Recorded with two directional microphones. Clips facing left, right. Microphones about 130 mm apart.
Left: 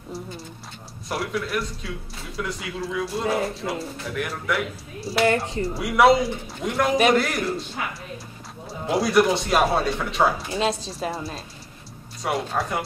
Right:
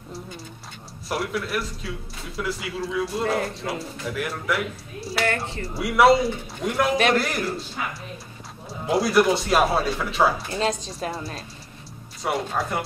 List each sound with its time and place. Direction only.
1.0 s a man's voice: centre (ahead or behind)
5.2 s speech: 20° left (ahead or behind)
5.8 s a man's voice: centre (ahead or behind)